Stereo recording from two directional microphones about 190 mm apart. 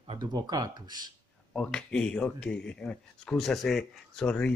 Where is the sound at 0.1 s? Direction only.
20° right (ahead or behind).